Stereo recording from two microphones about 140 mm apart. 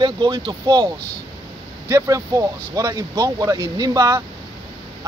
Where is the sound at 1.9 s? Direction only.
25° right (ahead or behind).